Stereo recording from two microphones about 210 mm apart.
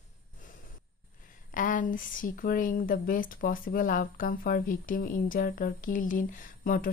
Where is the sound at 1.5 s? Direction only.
40° left (ahead or behind).